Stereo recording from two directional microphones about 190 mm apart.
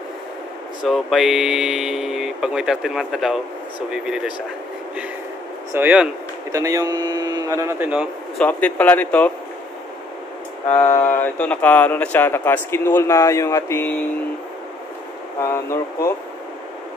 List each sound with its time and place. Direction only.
0.8 s speech: centre (ahead or behind)
5.7 s a man's voice: 10° right (ahead or behind)
8.4 s speech: 5° left (ahead or behind)
10.7 s speech: 10° left (ahead or behind)
15.4 s speech: 15° left (ahead or behind)